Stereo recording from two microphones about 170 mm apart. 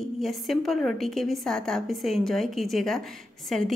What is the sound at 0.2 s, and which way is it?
A woman's voice, centre (ahead or behind).